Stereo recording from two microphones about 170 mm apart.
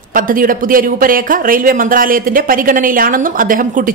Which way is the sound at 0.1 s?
55° right (ahead or behind).